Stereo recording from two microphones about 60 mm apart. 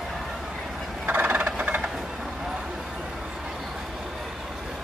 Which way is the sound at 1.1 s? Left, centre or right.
Right.